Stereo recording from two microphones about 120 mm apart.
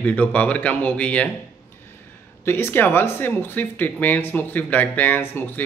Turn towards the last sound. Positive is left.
turn(degrees=15)  # may be behind; listen again after turning